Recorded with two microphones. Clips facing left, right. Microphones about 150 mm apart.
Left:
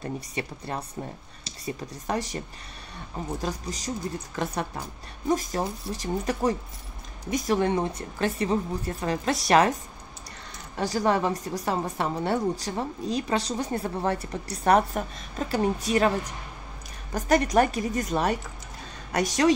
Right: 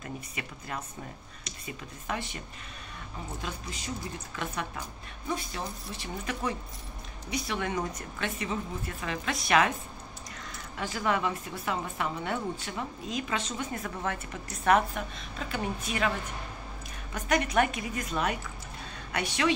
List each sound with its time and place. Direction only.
0.0 s a woman's voice: 35° left (ahead or behind)
10.8 s a woman's voice: 35° left (ahead or behind)